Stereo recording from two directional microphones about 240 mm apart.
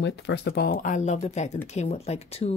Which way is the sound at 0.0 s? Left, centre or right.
Left.